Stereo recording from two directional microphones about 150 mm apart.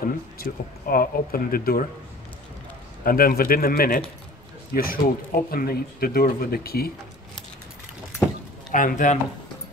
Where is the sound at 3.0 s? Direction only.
75° left (ahead or behind).